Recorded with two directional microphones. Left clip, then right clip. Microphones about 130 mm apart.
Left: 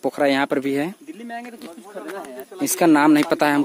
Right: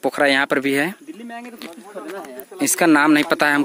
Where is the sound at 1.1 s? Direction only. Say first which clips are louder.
Left 1 dB; 55° right (ahead or behind).